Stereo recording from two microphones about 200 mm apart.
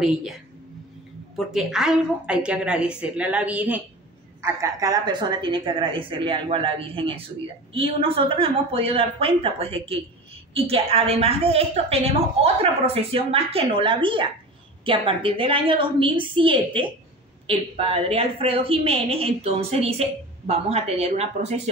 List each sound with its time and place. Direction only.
0.0 s a woman's voice: 5° right (ahead or behind); by 21.5 s 30° right (ahead or behind)